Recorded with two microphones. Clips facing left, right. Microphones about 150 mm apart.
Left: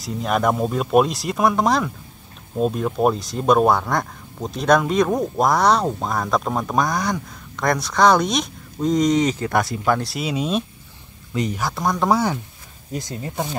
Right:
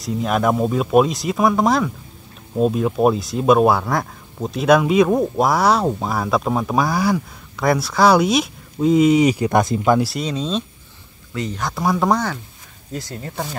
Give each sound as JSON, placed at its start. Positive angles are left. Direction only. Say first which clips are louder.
{"t": 0.0, "sound": "speech", "louder": "right 2 dB", "side_deg": 0}
{"t": 9.9, "sound": "speech", "louder": "right 3 dB", "side_deg": 0}
{"t": 11.6, "sound": "speech", "louder": "right 4 dB", "side_deg": 0}
{"t": 12.9, "sound": "speech", "louder": "left 1 dB", "side_deg": 20}